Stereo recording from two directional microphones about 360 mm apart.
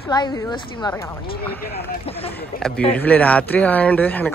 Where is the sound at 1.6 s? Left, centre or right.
Left.